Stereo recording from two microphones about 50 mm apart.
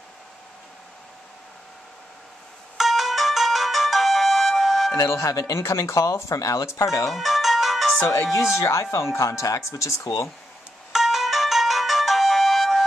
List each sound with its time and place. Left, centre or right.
2.8 s music: centre
4.9 s speech: left
7.1 s music: centre
8.1 s speech: left
10.9 s ringtone: centre